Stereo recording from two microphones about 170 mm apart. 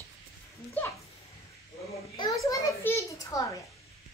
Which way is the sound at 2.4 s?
20° left (ahead or behind).